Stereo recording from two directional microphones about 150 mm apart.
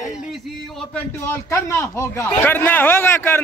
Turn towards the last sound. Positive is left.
turn(degrees=15)  # may be behind; listen again after turning